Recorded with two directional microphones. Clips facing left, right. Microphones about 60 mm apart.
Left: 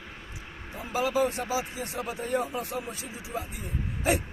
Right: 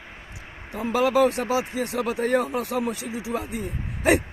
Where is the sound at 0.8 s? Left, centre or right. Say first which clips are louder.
Right 7 dB; right.